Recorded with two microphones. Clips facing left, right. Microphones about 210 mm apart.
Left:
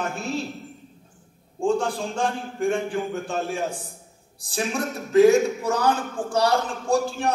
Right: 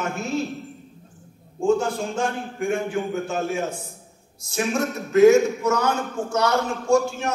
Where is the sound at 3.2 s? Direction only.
35° left (ahead or behind).